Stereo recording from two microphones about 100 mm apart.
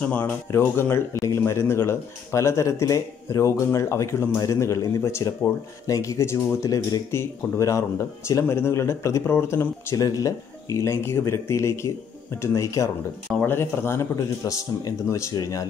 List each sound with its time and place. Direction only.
0.0 s speech: 15° left (ahead or behind); by 15.2 s 30° left (ahead or behind)